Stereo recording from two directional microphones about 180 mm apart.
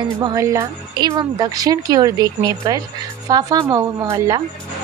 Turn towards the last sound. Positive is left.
turn(degrees=-20)  # may be behind; listen again after turning